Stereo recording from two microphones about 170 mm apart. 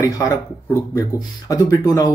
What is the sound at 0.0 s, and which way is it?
Speech, 20° left (ahead or behind).